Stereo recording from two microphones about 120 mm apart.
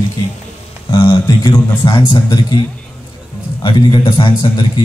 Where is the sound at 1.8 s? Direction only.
35° left (ahead or behind).